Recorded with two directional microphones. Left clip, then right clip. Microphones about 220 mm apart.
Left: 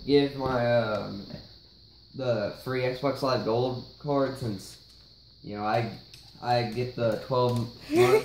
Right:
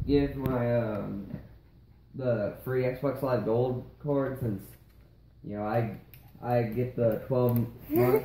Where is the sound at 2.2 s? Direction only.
30° left (ahead or behind).